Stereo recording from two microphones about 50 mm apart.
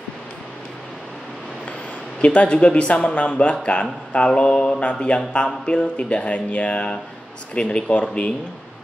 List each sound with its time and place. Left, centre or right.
2.2 s mantra: left